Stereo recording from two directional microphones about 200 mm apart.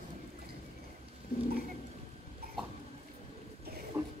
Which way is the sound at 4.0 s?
10° right (ahead or behind).